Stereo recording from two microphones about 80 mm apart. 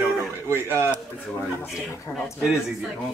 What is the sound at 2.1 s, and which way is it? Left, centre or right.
Speech, centre.